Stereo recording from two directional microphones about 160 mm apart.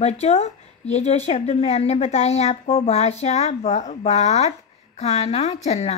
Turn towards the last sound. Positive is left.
turn(degrees=45)  # may be behind; listen again after turning